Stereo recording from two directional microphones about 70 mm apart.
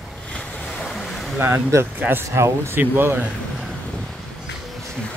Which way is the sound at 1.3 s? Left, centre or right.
Right.